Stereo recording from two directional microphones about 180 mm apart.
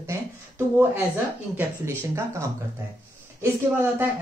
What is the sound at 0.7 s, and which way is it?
Speech, 10° right (ahead or behind).